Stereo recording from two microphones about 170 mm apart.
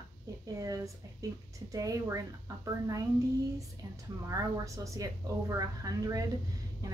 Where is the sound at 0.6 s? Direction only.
20° right (ahead or behind).